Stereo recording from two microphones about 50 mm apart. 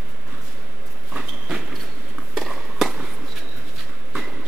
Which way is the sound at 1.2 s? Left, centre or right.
Centre.